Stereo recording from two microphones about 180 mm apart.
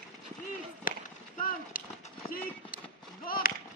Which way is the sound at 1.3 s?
50° left (ahead or behind).